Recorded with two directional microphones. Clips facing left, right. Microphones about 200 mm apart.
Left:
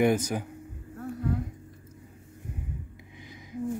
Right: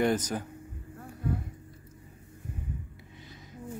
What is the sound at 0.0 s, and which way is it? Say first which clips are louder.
Speech: left 3 dB; 10° left (ahead or behind).